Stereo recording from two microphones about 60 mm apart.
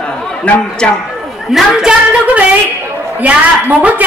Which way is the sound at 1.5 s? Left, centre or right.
Centre.